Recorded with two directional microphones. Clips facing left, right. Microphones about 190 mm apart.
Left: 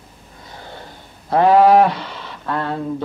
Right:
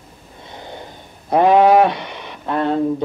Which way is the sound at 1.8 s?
20° right (ahead or behind).